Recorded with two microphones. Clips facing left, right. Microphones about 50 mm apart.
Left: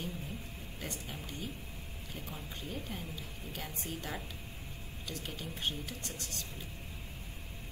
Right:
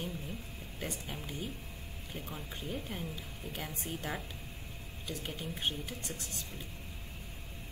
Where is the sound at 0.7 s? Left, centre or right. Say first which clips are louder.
Right 3 dB; centre.